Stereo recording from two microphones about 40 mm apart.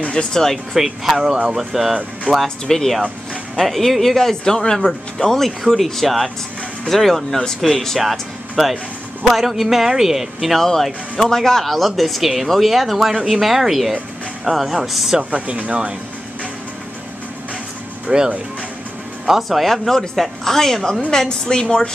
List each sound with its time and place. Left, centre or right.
0.1 s speech: centre
0.7 s speech: centre
2.4 s speech: centre
3.5 s speech: centre
8.0 s speech: centre
10.6 s speech: centre
15.3 s speech: right
18.1 s speech: right
19.2 s speech: centre
19.6 s speech: centre